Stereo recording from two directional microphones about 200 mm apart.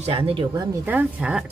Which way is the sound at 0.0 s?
30° right (ahead or behind).